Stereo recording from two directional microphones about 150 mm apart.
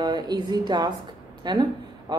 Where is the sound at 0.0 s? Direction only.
30° right (ahead or behind).